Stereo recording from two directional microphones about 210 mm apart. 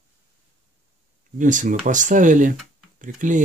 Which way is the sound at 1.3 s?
35° right (ahead or behind).